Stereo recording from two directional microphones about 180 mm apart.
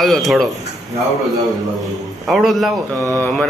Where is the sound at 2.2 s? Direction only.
Centre (ahead or behind).